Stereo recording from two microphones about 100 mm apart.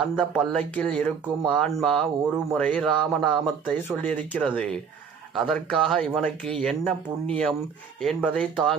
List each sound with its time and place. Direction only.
0.0 s speech: 5° right (ahead or behind)
3.9 s speech: 15° left (ahead or behind)